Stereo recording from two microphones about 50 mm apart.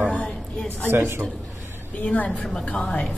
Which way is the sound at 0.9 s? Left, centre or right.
Right.